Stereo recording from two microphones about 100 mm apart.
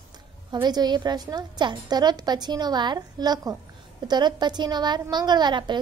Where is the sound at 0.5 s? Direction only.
45° right (ahead or behind).